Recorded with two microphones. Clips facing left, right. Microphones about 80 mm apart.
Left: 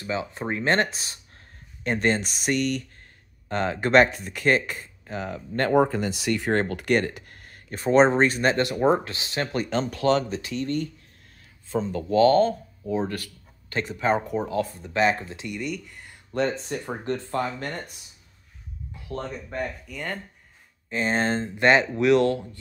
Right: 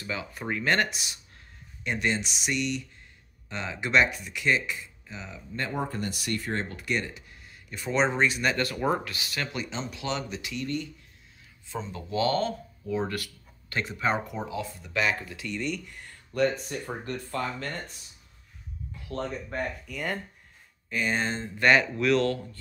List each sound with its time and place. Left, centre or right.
0.0 s speech: left
6.4 s speech: left
8.6 s speech: left
9.5 s speech: left
14.8 s speech: left
15.5 s speech: centre
16.3 s speech: left
19.1 s speech: centre
20.9 s speech: left
21.5 s speech: left